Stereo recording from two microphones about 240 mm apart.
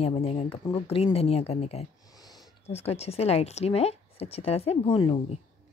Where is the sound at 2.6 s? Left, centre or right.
Left.